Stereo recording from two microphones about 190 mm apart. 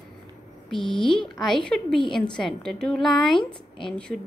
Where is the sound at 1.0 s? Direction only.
25° left (ahead or behind).